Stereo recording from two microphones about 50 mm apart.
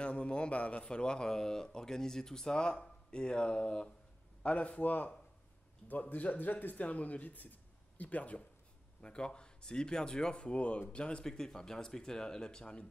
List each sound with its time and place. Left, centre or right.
0.0 s a man's voice: left
9.0 s speech: centre